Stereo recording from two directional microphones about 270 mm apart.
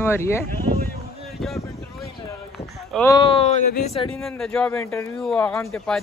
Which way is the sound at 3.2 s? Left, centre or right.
Centre.